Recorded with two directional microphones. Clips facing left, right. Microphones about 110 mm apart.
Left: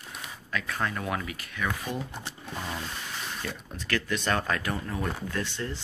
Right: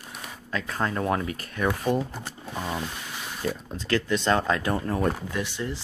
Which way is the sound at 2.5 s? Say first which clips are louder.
Right 5 dB; 20° right (ahead or behind).